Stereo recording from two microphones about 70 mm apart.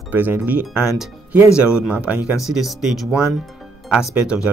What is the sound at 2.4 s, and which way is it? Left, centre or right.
Speech, centre.